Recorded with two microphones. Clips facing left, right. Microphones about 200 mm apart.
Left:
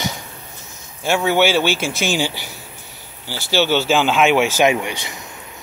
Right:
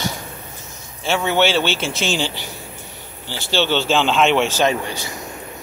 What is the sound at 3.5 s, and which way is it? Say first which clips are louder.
Speech: left 2 dB; 10° left (ahead or behind).